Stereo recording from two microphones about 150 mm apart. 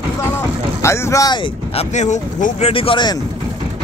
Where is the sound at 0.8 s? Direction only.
25° left (ahead or behind).